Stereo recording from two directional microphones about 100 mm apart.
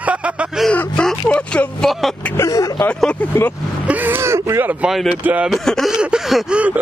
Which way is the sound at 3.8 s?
20° right (ahead or behind).